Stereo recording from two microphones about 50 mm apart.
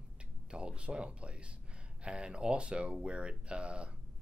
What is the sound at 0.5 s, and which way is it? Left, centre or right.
Speech, right.